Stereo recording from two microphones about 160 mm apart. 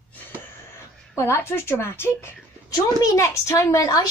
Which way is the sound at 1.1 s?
15° left (ahead or behind).